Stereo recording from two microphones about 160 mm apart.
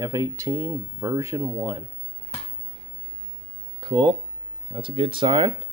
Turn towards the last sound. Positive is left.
turn(degrees=-30)  # may be behind; listen again after turning